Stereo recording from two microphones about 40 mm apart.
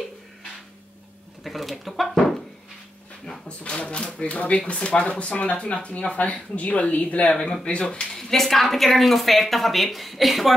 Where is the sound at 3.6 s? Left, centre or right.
Left.